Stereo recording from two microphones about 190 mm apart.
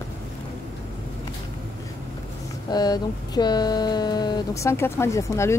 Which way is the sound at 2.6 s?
20° left (ahead or behind).